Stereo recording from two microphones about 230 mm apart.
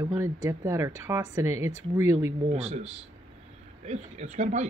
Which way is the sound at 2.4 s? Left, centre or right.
Right.